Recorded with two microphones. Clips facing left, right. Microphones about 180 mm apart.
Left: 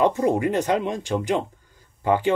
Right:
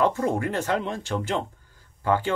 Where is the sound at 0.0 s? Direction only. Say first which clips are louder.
Left 3 dB; 15° left (ahead or behind).